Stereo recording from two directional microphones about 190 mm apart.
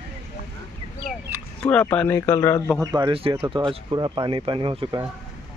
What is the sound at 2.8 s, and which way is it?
Speech, 20° right (ahead or behind).